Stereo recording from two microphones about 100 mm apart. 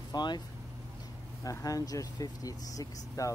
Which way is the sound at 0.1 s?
45° left (ahead or behind).